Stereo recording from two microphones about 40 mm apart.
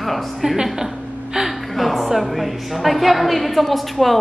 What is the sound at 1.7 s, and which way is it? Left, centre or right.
A woman's voice, centre.